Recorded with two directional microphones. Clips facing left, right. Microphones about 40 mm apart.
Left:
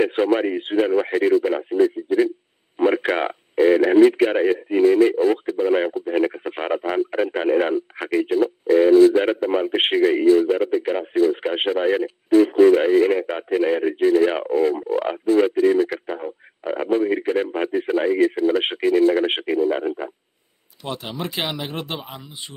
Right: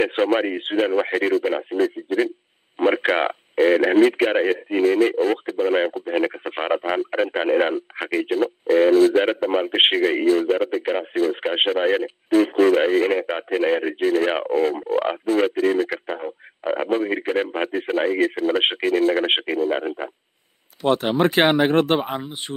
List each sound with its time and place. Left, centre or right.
0.0 s speech: right
1.8 s speech: right
20.8 s speech: right